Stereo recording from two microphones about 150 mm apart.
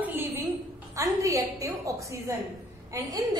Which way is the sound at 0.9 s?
20° right (ahead or behind).